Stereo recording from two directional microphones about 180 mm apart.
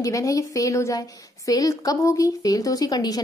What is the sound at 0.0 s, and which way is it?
A woman's voice, 20° left (ahead or behind).